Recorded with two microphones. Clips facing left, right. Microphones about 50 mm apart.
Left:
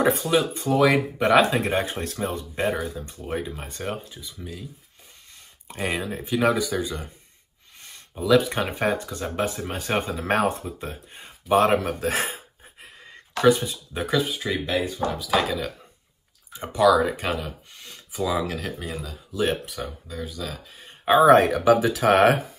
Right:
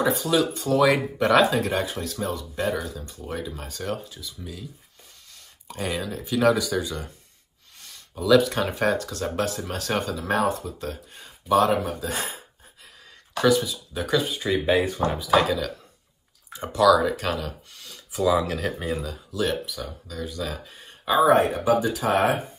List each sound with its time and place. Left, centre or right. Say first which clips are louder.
0.0 s speech: left 1 dB; left
5.9 s speech: left 2 dB; left
10.2 s speech: even; left
11.6 s speech: left 2 dB; left
13.0 s a sound: left 3 dB; left
14.1 s speech: right 1 dB; centre
14.8 s speech: right 2 dB; right
15.1 s speech: right 4 dB; centre
16.5 s speech: even; left
18.1 s speech: right 3 dB; centre
19.5 s speech: even; left
20.2 s speech: right 2 dB; centre
21.2 s speech: left 3 dB; left